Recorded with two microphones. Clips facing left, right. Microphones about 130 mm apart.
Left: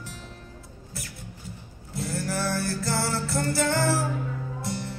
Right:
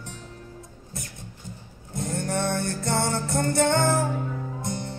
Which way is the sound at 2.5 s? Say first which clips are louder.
Right 1 dB; 35° left (ahead or behind).